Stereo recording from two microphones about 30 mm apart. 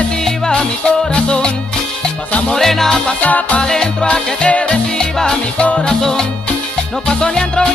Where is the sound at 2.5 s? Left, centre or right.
Centre.